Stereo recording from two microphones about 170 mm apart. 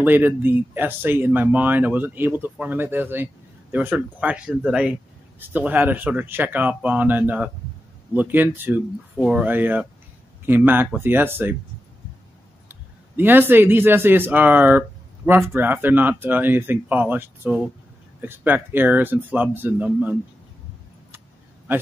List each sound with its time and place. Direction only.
0.0 s speech: 10° right (ahead or behind)
12.6 s speech: 10° right (ahead or behind)